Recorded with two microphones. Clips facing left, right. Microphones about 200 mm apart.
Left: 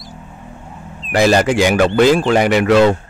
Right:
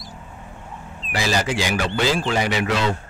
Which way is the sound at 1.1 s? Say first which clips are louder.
Left 10 dB; 60° left (ahead or behind).